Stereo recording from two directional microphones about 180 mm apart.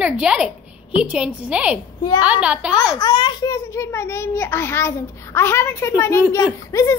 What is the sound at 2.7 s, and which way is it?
A child's voice, 20° left (ahead or behind).